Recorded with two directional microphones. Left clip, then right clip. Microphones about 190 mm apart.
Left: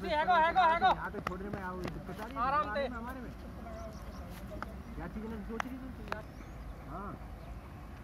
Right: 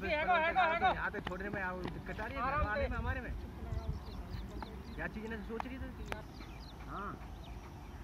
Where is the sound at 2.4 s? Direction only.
20° right (ahead or behind).